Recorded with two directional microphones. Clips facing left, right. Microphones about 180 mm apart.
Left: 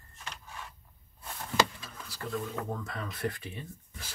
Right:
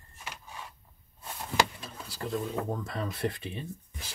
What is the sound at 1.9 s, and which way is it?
Speech, 25° right (ahead or behind).